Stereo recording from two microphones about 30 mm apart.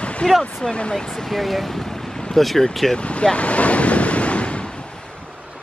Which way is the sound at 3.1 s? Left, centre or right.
Left.